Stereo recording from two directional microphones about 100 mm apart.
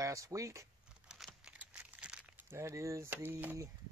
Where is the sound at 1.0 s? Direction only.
5° right (ahead or behind).